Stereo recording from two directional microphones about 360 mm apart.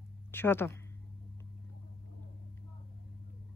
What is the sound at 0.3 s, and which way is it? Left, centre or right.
Speech, centre.